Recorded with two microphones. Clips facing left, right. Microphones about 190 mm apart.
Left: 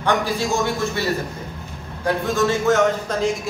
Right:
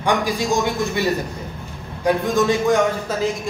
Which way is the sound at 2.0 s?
15° right (ahead or behind).